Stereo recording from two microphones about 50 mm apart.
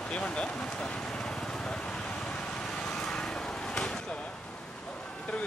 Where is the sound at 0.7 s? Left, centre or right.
Centre.